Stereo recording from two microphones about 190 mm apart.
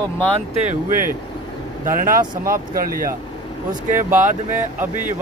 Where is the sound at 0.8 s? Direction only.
50° right (ahead or behind).